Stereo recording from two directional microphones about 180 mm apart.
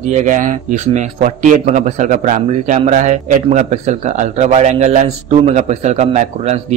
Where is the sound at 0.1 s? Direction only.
45° right (ahead or behind).